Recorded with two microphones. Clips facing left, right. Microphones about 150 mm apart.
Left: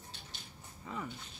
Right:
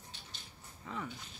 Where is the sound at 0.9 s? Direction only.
5° left (ahead or behind).